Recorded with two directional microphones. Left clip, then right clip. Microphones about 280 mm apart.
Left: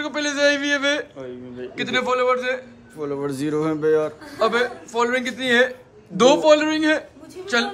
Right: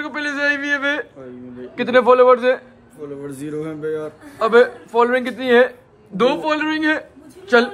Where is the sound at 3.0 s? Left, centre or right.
Left.